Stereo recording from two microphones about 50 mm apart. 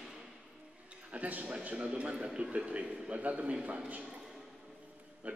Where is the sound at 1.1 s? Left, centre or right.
Right.